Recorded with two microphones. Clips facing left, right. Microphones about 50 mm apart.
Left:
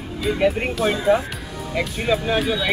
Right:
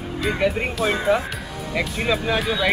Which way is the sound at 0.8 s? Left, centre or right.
Centre.